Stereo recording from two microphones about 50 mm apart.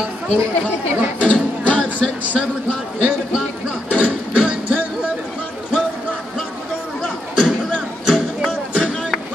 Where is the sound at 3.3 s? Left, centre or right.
Centre.